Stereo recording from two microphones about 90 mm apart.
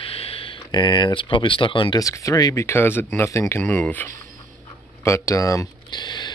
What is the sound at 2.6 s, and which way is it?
Speech, 25° left (ahead or behind).